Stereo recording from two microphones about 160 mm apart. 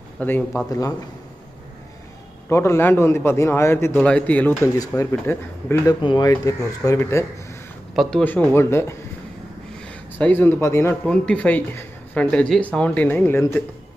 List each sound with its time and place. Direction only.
0.2 s speech: 10° left (ahead or behind)
2.5 s speech: 15° left (ahead or behind)
6.0 s speech: 25° left (ahead or behind)
7.9 s speech: centre (ahead or behind)